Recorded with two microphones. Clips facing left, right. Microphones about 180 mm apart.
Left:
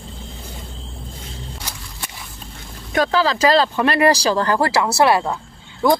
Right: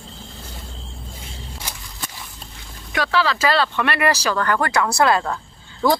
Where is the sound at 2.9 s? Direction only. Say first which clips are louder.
Left 3 dB; 40° left (ahead or behind).